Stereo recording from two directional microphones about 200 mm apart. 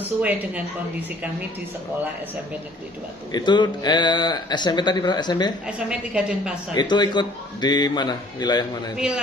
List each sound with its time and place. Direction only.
0.2 s speech: 5° right (ahead or behind)
3.3 s speech: 20° left (ahead or behind)
5.9 s a woman's voice: 5° right (ahead or behind)
6.7 s speech: 20° left (ahead or behind)
8.9 s a woman's voice: 5° right (ahead or behind)